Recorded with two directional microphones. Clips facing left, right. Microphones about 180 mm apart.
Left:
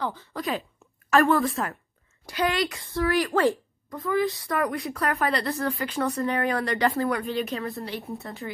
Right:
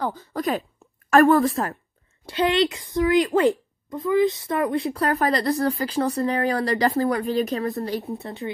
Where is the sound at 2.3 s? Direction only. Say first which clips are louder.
Right 5 dB; 25° right (ahead or behind).